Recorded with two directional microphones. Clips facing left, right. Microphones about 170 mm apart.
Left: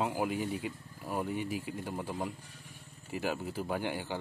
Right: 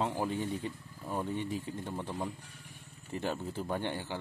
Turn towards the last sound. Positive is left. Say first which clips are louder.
# left 1 dB
turn(degrees=10)  # may be behind; listen again after turning